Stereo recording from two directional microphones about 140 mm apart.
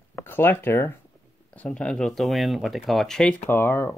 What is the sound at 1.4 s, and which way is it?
Speech, 5° left (ahead or behind).